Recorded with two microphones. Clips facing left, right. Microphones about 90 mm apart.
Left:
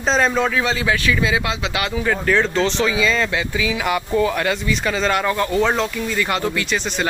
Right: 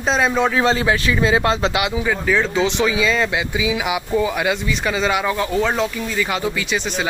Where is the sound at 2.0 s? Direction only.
Centre (ahead or behind).